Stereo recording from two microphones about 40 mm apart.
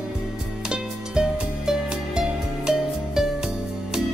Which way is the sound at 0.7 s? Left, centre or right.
Right.